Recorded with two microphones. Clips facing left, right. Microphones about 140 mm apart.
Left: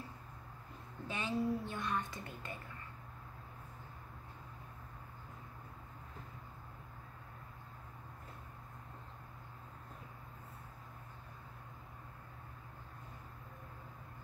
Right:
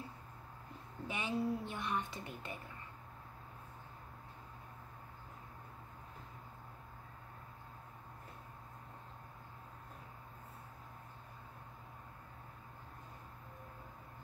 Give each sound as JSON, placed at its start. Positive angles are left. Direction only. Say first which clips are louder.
{"t": 1.0, "sound": "a woman's voice", "louder": "left 1 dB", "side_deg": -15}